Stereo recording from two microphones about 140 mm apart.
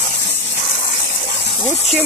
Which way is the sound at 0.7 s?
45° left (ahead or behind).